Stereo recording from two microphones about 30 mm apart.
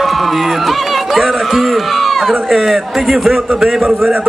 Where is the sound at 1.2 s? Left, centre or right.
Centre.